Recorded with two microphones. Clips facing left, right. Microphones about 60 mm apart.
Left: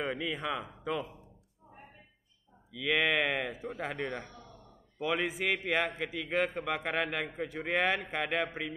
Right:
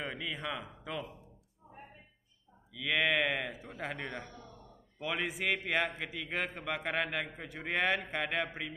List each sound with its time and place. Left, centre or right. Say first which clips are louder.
0.0 s a man's voice: left 4 dB; centre
2.7 s a man's voice: left 2 dB; centre